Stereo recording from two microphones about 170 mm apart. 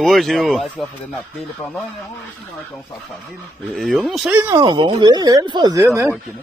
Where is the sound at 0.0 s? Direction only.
Centre (ahead or behind).